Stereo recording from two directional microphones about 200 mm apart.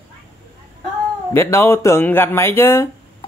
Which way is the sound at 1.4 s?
10° left (ahead or behind).